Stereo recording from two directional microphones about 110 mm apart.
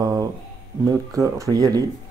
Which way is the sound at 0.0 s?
35° right (ahead or behind).